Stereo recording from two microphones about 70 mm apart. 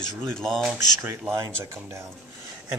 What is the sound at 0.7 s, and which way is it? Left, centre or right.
Speech, right.